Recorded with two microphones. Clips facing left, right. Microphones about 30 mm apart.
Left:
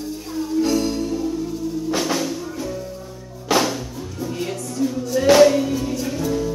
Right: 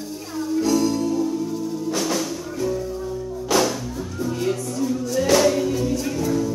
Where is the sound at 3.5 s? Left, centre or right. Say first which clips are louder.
Left 1 dB; left.